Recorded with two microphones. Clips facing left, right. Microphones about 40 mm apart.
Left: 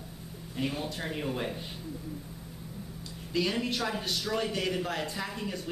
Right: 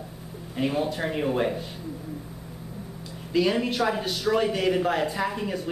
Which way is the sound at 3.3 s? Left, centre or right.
Centre.